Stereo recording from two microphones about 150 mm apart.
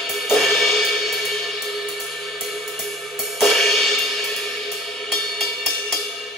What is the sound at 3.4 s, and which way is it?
Music, centre (ahead or behind).